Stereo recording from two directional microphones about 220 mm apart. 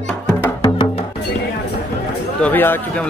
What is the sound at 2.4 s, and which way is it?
Speech, 10° left (ahead or behind).